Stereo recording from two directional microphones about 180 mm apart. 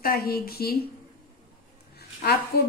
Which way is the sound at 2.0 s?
60° left (ahead or behind).